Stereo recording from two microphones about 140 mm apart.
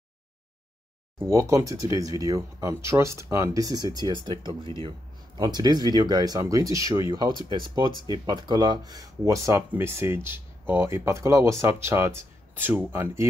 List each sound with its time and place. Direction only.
1.2 s speech: 20° right (ahead or behind)